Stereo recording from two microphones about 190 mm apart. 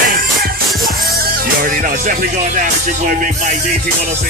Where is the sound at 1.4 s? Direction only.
50° right (ahead or behind).